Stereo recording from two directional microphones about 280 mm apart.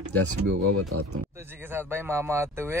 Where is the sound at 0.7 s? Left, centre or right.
Right.